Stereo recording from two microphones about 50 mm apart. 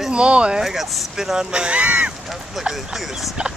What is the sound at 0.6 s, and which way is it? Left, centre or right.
Speech, centre.